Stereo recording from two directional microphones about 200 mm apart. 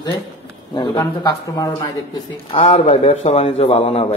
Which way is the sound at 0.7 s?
25° left (ahead or behind).